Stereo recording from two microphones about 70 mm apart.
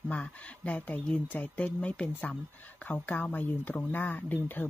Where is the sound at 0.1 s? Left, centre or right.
Centre.